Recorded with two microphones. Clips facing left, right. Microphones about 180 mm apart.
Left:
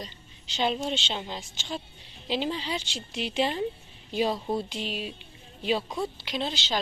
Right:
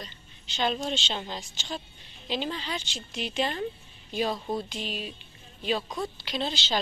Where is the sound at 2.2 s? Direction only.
25° left (ahead or behind).